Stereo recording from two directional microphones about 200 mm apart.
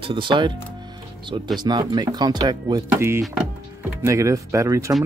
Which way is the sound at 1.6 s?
20° right (ahead or behind).